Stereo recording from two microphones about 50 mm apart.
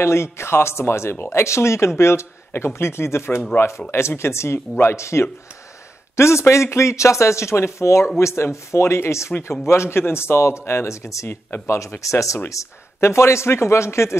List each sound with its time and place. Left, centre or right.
0.0 s speech: left
11.2 s speech: left
12.0 s speech: left
12.4 s speech: left